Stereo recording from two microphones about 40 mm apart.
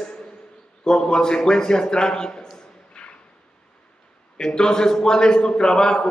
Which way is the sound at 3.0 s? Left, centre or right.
Left.